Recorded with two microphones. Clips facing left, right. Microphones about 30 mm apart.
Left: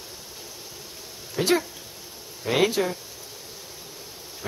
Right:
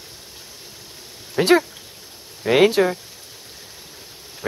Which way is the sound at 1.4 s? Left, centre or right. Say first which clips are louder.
Right 7 dB; right.